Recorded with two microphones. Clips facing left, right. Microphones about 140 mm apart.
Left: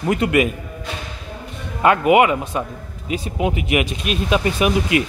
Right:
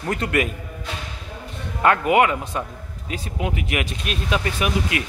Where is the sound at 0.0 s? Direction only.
10° left (ahead or behind).